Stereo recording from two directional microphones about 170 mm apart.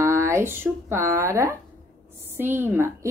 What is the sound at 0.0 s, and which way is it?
A woman's voice, 15° right (ahead or behind).